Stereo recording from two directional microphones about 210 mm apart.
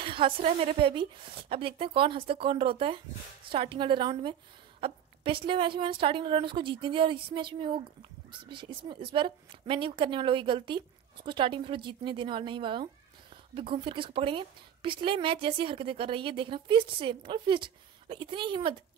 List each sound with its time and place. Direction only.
0.0 s a woman's voice: 25° right (ahead or behind)